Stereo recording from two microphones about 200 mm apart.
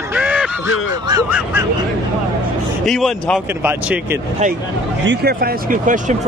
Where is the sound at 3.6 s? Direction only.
10° right (ahead or behind).